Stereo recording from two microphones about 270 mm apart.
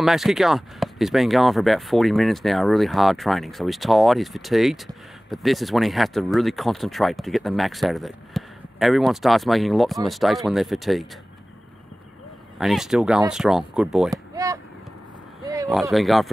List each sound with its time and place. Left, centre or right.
0.0 s speech: centre
12.5 s speech: centre
14.1 s a sound: centre
15.7 s speech: centre